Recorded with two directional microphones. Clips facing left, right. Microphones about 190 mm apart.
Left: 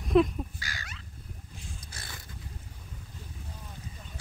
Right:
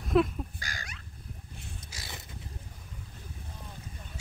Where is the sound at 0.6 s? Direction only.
45° right (ahead or behind).